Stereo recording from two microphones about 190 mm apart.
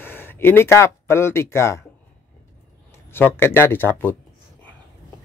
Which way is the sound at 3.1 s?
10° left (ahead or behind).